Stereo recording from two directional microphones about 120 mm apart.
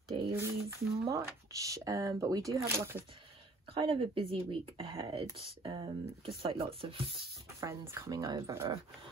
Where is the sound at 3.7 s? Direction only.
50° right (ahead or behind).